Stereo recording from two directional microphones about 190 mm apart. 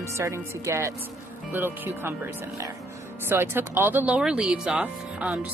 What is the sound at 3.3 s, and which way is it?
Speech, 10° right (ahead or behind).